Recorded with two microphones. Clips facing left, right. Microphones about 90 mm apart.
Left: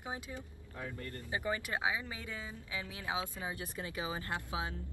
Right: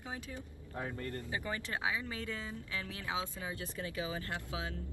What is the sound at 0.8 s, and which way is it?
Speech, 30° right (ahead or behind).